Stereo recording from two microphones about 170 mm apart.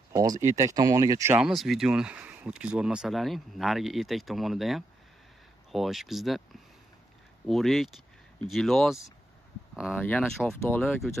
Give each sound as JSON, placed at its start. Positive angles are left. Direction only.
{"t": 0.1, "sound": "speech", "side_deg": -20}
{"t": 1.4, "sound": "speech", "side_deg": 0}